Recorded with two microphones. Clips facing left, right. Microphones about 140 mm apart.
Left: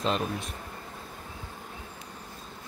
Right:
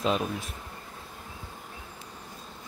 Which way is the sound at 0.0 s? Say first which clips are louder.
Right 1 dB; 5° right (ahead or behind).